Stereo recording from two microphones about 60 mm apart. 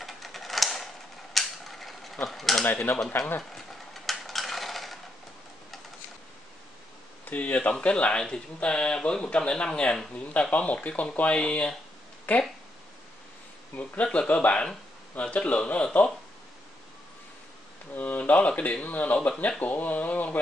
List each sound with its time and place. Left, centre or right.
0.0 s typewriter: centre
1.3 s mechanisms: centre
2.2 s speech: centre
2.6 s speech: left
3.5 s a sound: centre
7.2 s a man's voice: left
12.3 s a man's voice: left
14.0 s a man's voice: centre
17.9 s a man's voice: left
19.1 s a man's voice: centre